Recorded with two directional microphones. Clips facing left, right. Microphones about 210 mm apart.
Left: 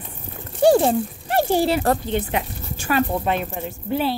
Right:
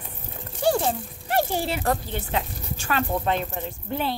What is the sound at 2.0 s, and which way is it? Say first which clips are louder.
A woman's voice: left 5 dB; 15° left (ahead or behind).